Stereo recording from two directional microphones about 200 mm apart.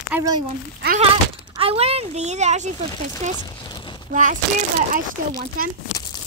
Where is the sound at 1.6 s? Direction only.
30° right (ahead or behind).